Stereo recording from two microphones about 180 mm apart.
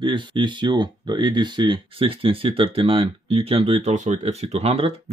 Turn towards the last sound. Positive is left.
turn(degrees=-30)  # may be behind; listen again after turning